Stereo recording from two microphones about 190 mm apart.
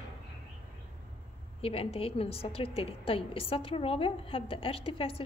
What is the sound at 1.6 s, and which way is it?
A woman's voice, 30° left (ahead or behind).